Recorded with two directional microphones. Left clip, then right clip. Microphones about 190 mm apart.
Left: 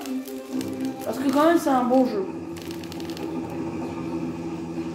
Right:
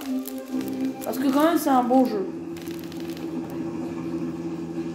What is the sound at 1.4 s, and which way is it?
Speech, 50° right (ahead or behind).